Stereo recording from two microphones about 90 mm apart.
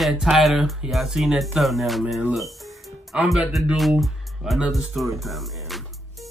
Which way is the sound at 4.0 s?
Centre (ahead or behind).